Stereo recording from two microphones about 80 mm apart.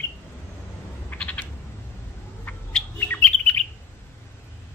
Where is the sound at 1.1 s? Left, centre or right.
Centre.